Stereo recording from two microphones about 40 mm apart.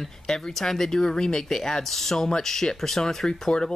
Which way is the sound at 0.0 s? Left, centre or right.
Centre.